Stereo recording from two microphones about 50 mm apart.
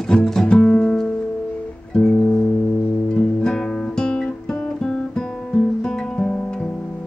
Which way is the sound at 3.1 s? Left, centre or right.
Centre.